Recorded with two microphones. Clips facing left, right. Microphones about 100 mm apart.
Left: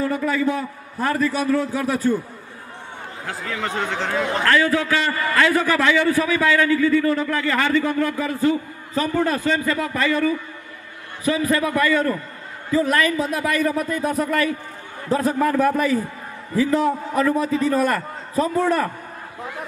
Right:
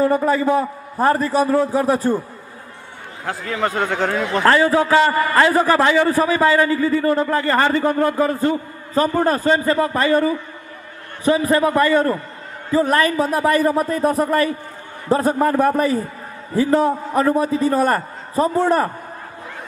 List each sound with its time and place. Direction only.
0.0 s a man's voice: 40° right (ahead or behind)
3.3 s speech: 40° right (ahead or behind)
4.6 s a man's voice: 30° right (ahead or behind)